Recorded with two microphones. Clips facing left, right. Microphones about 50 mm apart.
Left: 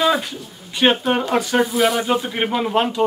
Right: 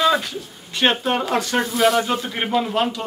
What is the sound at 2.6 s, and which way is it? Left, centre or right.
Speech, left.